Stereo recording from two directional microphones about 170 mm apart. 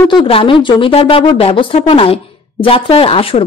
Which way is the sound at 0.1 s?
30° left (ahead or behind).